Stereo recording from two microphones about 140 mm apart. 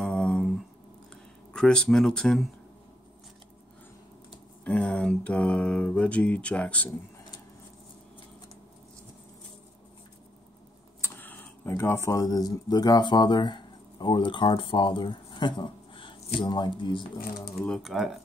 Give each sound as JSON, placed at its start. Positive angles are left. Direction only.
{"t": 0.0, "sound": "a sound", "side_deg": 5}
{"t": 1.1, "sound": "speech", "side_deg": 5}
{"t": 4.6, "sound": "speech", "side_deg": 10}
{"t": 11.0, "sound": "speech", "side_deg": 15}
{"t": 17.6, "sound": "speech", "side_deg": 5}